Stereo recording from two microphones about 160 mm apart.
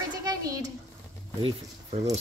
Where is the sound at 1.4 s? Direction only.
40° right (ahead or behind).